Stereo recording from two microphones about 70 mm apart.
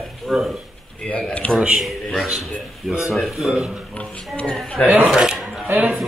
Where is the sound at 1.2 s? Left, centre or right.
Centre.